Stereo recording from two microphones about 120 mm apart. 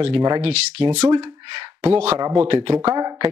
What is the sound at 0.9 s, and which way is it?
Speech, 35° right (ahead or behind).